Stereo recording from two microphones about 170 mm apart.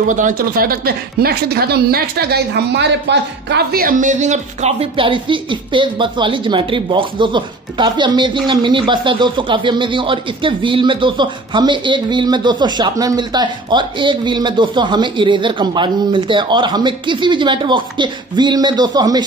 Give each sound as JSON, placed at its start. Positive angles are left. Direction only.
{"t": 0.1, "sound": "speech", "side_deg": -50}